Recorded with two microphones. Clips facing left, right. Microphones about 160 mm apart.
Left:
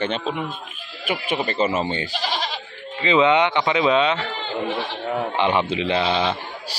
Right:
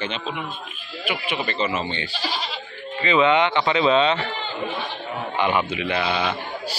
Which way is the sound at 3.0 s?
20° left (ahead or behind).